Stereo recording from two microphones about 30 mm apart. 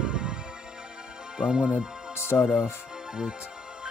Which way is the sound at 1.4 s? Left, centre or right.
Right.